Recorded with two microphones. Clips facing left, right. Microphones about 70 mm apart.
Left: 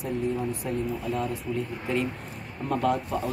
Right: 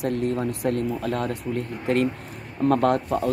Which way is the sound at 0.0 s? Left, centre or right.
Right.